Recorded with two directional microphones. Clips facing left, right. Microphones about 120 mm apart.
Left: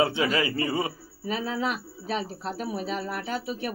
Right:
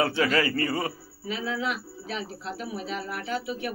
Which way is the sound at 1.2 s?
40° left (ahead or behind).